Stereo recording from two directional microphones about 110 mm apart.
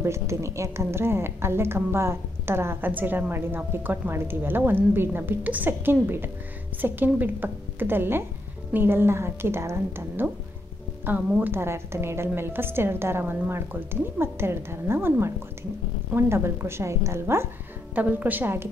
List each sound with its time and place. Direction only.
0.0 s a woman's voice: 25° right (ahead or behind)